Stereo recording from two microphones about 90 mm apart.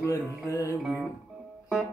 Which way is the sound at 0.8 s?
10° right (ahead or behind).